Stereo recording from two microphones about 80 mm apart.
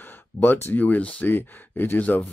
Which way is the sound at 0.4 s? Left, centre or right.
Left.